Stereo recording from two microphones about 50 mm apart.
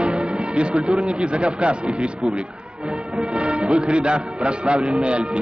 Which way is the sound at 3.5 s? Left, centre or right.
Centre.